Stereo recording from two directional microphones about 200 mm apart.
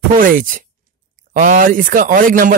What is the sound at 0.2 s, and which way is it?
Speech, 40° right (ahead or behind).